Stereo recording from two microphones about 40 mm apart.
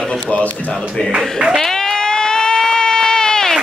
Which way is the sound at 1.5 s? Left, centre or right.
Centre.